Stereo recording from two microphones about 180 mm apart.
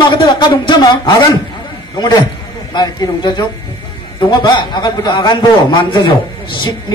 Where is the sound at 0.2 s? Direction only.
25° left (ahead or behind).